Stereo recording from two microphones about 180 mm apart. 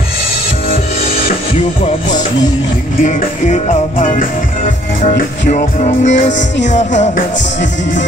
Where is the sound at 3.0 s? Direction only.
40° left (ahead or behind).